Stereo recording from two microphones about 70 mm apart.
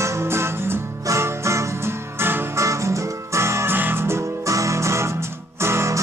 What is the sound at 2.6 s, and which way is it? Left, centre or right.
Music, right.